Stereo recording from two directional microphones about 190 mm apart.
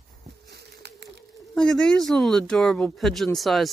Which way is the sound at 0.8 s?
60° right (ahead or behind).